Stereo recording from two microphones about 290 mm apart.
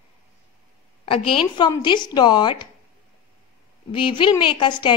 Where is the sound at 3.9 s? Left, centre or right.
Centre.